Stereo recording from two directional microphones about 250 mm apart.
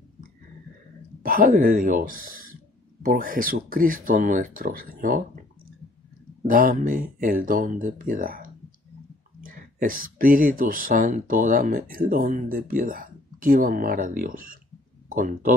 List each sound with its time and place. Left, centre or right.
1.2 s speech: right
6.4 s speech: right